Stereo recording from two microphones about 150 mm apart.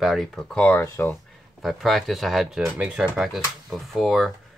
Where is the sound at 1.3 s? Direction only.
Centre (ahead or behind).